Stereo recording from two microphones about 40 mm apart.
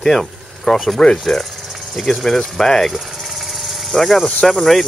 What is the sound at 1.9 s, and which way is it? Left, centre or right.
Speech, centre.